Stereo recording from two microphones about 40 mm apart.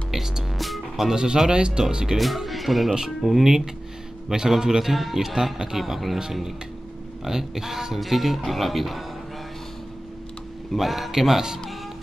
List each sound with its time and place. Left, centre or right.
0.1 s speech: centre
0.6 s music: centre
1.0 s speech: centre
2.1 s speech: centre
4.3 s speech: centre
5.8 s speech: centre
7.2 s speech: centre
10.8 s speech: centre